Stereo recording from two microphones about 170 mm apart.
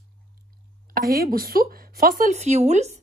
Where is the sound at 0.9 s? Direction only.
60° right (ahead or behind); by 3.0 s 40° right (ahead or behind).